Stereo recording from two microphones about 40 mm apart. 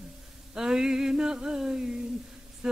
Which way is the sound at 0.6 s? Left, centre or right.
Centre.